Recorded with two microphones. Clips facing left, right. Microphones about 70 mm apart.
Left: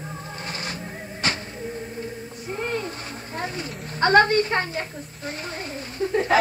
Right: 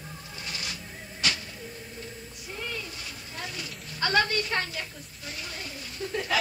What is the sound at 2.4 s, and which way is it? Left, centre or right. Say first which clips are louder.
Music: left 9 dB; left.